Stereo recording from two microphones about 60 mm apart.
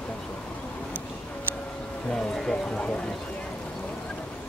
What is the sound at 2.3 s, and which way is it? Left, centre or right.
Speech, centre.